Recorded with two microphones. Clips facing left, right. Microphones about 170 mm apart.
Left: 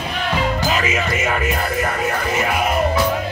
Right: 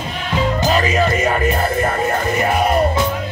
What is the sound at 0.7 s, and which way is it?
Music, 40° right (ahead or behind).